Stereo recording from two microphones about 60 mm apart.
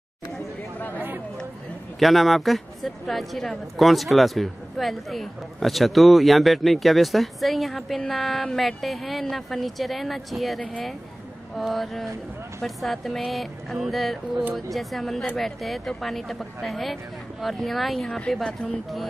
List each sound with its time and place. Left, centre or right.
0.7 s chatter: left
2.0 s speech: centre